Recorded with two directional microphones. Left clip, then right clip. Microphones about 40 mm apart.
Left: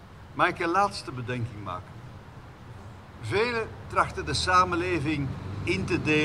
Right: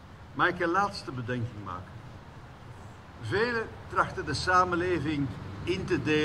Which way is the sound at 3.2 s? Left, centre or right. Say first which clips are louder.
Left 2 dB; left.